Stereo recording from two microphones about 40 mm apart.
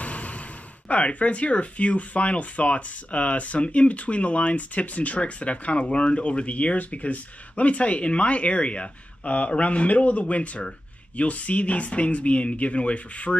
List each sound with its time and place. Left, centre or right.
0.0 s sigh: left
0.8 s speech: left